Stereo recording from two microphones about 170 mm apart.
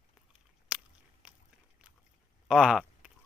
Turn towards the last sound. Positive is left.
turn(degrees=0)  # may be behind; listen again after turning